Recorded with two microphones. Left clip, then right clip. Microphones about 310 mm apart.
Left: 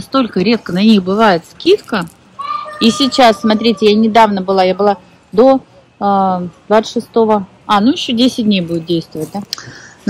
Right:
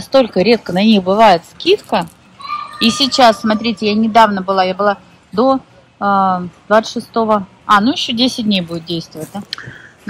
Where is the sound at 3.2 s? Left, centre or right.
Centre.